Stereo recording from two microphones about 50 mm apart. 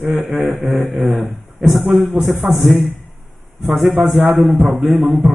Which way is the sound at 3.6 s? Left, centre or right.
Centre.